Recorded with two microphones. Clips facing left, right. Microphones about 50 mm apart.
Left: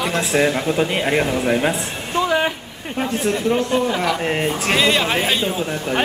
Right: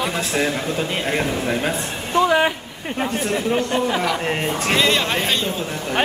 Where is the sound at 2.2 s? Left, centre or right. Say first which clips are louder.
Right 2 dB; centre.